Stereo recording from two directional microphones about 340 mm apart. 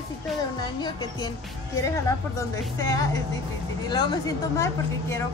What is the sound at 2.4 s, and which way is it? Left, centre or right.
Speech, centre.